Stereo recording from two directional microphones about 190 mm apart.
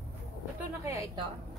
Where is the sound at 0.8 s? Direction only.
15° right (ahead or behind).